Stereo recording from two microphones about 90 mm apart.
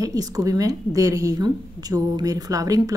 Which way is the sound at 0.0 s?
40° right (ahead or behind).